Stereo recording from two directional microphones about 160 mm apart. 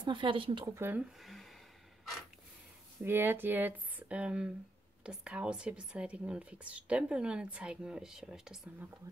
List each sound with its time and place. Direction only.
0.0 s speech: 30° right (ahead or behind)
0.7 s speech: 15° right (ahead or behind)
1.2 s gasp: centre (ahead or behind)
3.0 s speech: 15° right (ahead or behind)
9.1 s speech: 20° right (ahead or behind)